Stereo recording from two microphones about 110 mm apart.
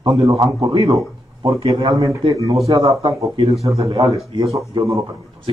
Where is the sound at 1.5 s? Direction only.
55° right (ahead or behind).